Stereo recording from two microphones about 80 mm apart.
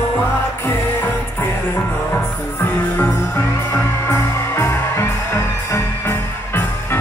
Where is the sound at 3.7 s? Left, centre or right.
Left.